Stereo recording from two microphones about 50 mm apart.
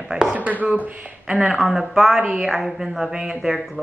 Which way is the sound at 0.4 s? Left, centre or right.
Right.